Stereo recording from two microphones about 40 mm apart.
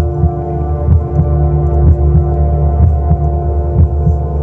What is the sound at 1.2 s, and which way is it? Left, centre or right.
Heart sounds, centre.